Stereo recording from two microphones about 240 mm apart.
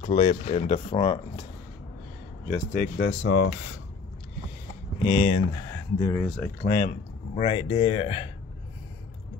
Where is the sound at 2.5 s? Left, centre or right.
Left.